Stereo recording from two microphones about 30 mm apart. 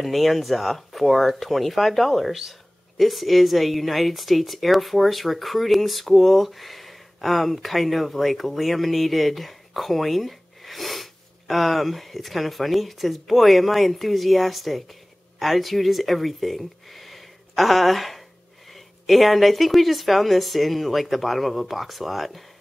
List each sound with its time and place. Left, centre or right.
0.0 s a woman's voice: centre